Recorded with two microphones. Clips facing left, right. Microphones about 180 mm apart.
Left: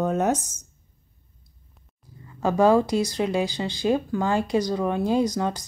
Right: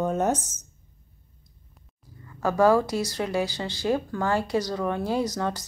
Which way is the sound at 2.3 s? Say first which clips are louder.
Left 1 dB; 20° left (ahead or behind).